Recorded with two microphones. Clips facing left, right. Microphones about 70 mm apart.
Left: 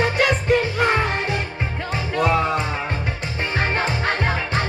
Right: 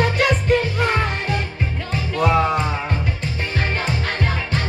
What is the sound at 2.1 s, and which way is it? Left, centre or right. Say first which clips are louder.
Music: right 2 dB; centre.